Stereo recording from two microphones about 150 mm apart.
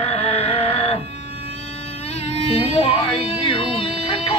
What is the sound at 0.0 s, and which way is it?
Music, 40° left (ahead or behind).